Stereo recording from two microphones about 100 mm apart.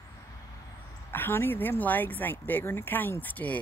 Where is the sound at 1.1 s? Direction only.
20° left (ahead or behind).